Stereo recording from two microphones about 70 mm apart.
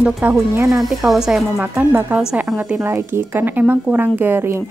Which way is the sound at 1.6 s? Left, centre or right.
Right.